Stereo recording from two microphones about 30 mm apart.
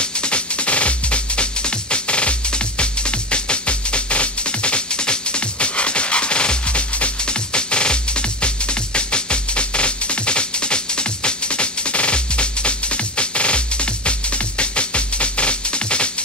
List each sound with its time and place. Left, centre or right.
0.0 s music: left